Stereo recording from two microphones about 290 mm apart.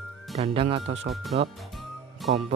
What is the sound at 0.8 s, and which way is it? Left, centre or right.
Speech, right.